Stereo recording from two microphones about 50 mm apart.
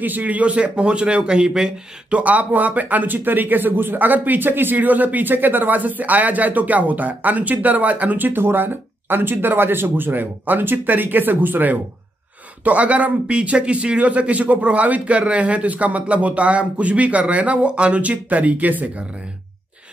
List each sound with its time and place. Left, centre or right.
0.0 s a man's voice: right
12.6 s a man's voice: right